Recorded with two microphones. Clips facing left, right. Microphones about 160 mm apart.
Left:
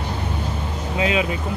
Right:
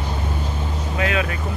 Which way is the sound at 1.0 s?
20° left (ahead or behind).